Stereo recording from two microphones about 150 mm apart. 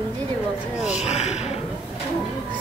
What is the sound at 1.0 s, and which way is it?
Speech, 50° left (ahead or behind).